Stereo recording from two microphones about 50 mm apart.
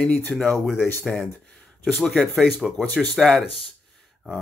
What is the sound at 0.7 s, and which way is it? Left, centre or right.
Speech, left.